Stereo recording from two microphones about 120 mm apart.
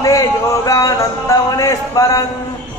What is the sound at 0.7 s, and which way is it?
Speech, 30° left (ahead or behind).